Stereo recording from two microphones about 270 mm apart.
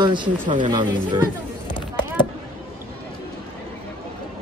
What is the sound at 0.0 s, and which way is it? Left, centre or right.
Speech, centre.